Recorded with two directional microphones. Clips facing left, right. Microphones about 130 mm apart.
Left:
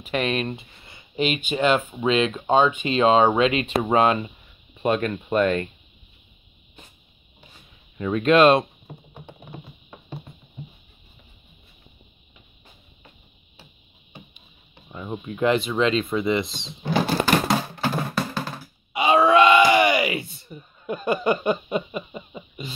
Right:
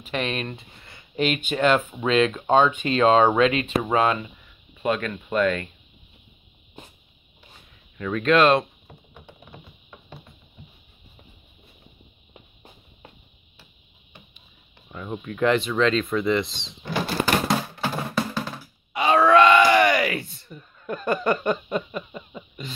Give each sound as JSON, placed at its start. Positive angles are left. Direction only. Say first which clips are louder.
{"t": 0.1, "sound": "speech", "louder": "left 3 dB", "side_deg": 10}
{"t": 8.0, "sound": "speech", "louder": "left 2 dB", "side_deg": 25}
{"t": 9.1, "sound": "music", "louder": "left 4 dB", "side_deg": 35}
{"t": 14.9, "sound": "speech", "louder": "left 1 dB", "side_deg": 20}
{"t": 17.5, "sound": "music", "louder": "left 2 dB", "side_deg": 0}
{"t": 18.9, "sound": "groan", "louder": "even", "side_deg": 15}